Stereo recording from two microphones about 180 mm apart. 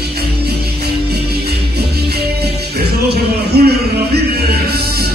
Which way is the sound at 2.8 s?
65° right (ahead or behind).